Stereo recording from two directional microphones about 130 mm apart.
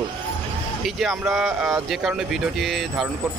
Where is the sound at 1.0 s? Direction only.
Centre (ahead or behind).